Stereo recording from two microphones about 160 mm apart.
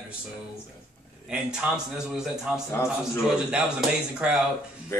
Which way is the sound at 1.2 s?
5° right (ahead or behind).